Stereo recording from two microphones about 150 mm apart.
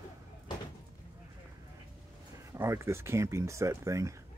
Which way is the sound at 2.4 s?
20° right (ahead or behind).